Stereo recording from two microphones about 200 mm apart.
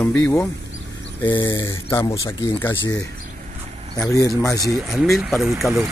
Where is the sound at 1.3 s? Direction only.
25° left (ahead or behind).